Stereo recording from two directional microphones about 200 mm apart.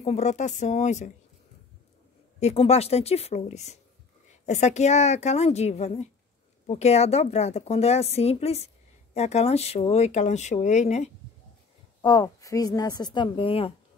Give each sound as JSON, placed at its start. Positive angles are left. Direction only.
{"t": 0.0, "sound": "speech", "side_deg": 35}
{"t": 2.4, "sound": "speech", "side_deg": 30}
{"t": 12.0, "sound": "a woman's voice", "side_deg": 20}